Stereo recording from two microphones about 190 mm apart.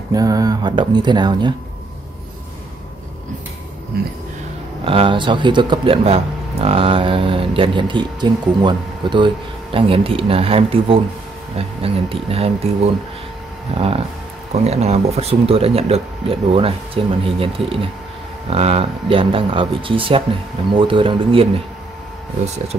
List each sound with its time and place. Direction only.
0.1 s speech: 20° right (ahead or behind)
3.9 s a sound: 55° right (ahead or behind)
4.8 s speech: 30° right (ahead or behind)